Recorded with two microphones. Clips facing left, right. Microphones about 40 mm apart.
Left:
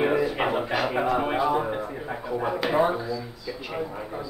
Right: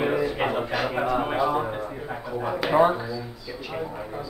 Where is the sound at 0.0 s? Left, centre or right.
Centre.